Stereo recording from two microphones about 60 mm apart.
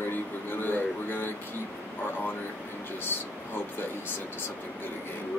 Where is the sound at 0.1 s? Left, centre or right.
Left.